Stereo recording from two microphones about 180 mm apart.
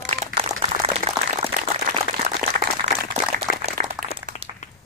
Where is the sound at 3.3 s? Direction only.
45° right (ahead or behind).